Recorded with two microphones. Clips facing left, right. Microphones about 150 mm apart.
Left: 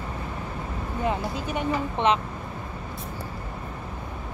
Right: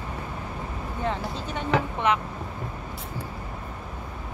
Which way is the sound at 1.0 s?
15° left (ahead or behind).